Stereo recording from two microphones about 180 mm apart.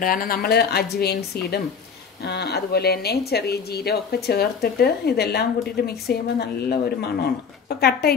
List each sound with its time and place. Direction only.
0.0 s a woman's voice: 50° left (ahead or behind)